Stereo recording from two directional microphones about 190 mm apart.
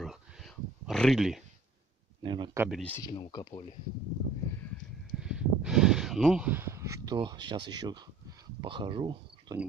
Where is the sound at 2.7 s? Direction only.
5° left (ahead or behind).